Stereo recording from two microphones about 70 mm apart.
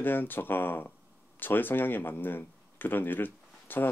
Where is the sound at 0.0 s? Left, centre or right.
Left.